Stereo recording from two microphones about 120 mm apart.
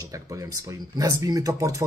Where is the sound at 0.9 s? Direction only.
30° right (ahead or behind).